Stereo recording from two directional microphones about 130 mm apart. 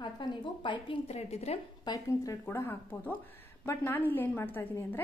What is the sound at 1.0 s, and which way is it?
Speech, 55° left (ahead or behind).